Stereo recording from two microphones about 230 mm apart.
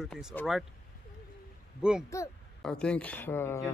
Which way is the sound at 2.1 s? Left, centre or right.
Centre.